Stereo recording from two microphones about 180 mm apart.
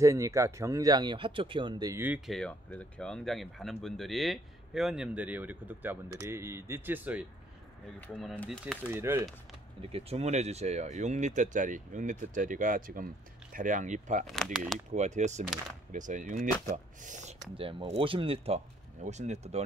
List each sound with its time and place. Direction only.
0.0 s speech: 15° right (ahead or behind)
8.1 s speech: centre (ahead or behind)
8.9 s speech: 15° right (ahead or behind)
9.8 s speech: 35° right (ahead or behind)
14.2 s speech: centre (ahead or behind)
14.9 s speech: 40° right (ahead or behind)